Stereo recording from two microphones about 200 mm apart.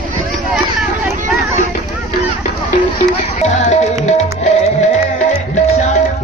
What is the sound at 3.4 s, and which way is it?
Music, 35° left (ahead or behind).